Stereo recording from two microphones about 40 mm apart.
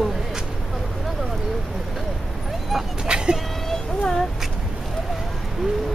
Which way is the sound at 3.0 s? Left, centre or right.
Right.